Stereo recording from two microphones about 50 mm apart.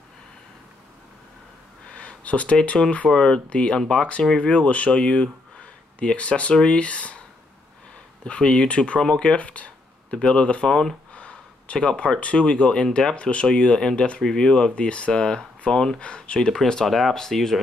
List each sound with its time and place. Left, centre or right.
2.0 s a sound: left
2.6 s speech: left
8.2 s speech: left
9.0 s speech: centre
9.4 s speech: left
10.1 s speech: centre
10.7 s speech: centre
11.1 s a sound: left
12.0 s speech: left